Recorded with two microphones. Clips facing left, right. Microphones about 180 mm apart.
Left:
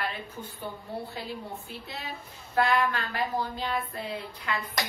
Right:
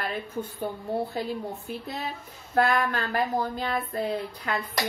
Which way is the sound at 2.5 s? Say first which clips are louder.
Right 2 dB; 45° right (ahead or behind).